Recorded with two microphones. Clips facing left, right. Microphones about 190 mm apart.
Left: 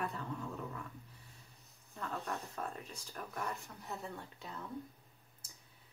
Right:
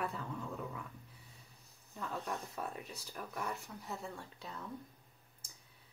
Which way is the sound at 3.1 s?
5° right (ahead or behind).